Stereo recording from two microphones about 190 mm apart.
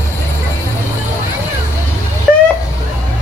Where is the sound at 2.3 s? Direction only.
5° left (ahead or behind).